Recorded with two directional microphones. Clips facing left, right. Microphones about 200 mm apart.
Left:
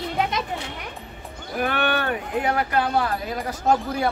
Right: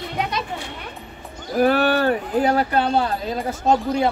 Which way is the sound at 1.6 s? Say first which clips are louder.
Right 7 dB; 35° right (ahead or behind).